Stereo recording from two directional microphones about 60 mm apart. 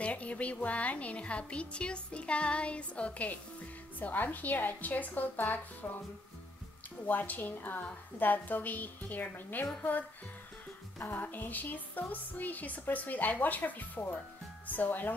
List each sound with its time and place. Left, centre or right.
0.0 s a woman's voice: left
7.1 s a woman's voice: left
11.0 s a woman's voice: left